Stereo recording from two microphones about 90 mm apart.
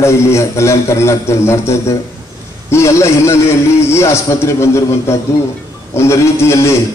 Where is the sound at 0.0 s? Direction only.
30° left (ahead or behind).